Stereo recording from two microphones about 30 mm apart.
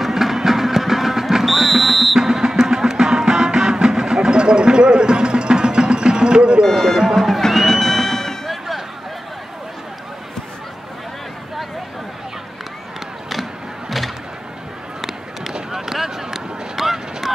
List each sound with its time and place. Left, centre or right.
0.0 s music: centre
2.1 s music: centre
6.6 s a sound: centre
7.2 s music: centre
8.5 s vehicle: centre
13.3 s music: centre
15.0 s a sound: centre